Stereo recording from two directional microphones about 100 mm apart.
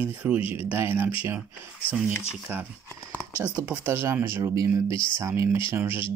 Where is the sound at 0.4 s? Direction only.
70° left (ahead or behind).